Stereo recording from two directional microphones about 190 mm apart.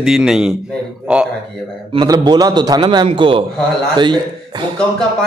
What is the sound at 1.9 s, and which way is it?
A man's voice, 25° right (ahead or behind).